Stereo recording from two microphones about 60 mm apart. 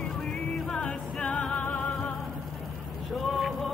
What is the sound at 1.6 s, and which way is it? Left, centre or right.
Music, centre.